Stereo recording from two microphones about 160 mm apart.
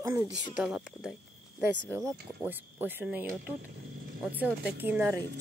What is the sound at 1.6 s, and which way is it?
Speech, 15° right (ahead or behind).